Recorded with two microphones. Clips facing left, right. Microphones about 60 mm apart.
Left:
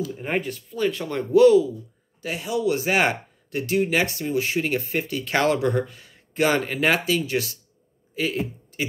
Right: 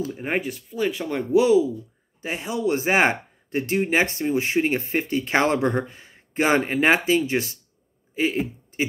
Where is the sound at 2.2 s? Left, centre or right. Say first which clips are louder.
Left 1 dB; right.